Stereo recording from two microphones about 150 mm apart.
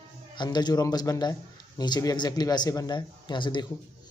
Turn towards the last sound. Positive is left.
turn(degrees=30)  # may be behind; listen again after turning